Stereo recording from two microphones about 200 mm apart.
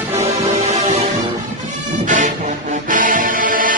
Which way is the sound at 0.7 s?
30° right (ahead or behind).